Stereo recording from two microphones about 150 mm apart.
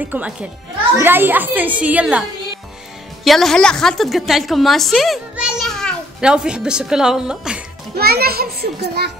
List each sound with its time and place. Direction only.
0.0 s a child's voice: 10° right (ahead or behind)
3.3 s a woman's voice: centre (ahead or behind)
7.9 s a child's voice: 90° right